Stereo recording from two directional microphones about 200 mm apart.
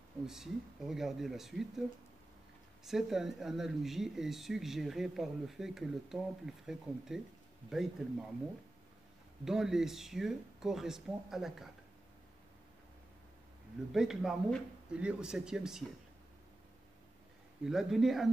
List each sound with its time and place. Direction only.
0.3 s speech: centre (ahead or behind)
2.8 s speech: centre (ahead or behind)
9.4 s speech: centre (ahead or behind)
13.9 s speech: centre (ahead or behind)
17.6 s speech: centre (ahead or behind)